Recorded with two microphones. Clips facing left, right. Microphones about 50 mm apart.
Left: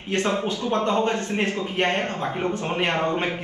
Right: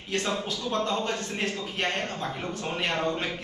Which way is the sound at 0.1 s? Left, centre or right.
Left.